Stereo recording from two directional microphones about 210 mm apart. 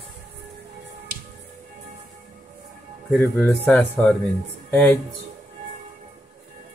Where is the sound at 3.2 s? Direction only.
10° left (ahead or behind).